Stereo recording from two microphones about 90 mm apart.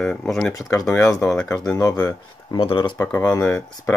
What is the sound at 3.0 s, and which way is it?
Speech, 15° left (ahead or behind).